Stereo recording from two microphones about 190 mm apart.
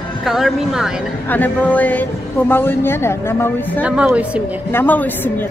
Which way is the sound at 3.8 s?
5° right (ahead or behind).